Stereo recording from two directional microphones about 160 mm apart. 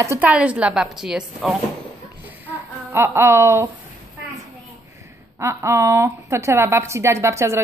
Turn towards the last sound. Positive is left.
turn(degrees=-15)  # may be behind; listen again after turning